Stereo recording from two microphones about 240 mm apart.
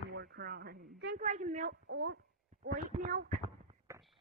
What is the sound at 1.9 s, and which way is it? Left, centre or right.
Speech, right.